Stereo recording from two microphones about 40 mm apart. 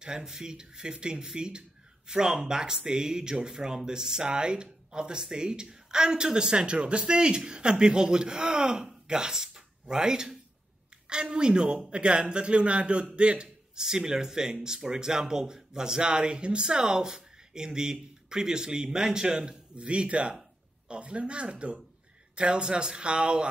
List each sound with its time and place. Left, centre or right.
0.0 s a man's voice: centre